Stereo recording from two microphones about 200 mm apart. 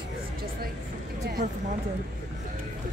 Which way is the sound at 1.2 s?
45° right (ahead or behind).